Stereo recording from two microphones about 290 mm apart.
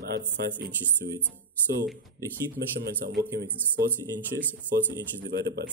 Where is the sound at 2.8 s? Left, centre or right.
Right.